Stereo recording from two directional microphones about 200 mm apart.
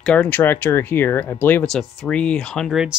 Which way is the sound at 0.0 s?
5° left (ahead or behind).